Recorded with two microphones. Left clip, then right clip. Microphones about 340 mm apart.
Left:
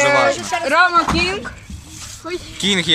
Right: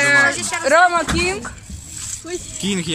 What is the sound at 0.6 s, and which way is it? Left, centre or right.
Speech, centre.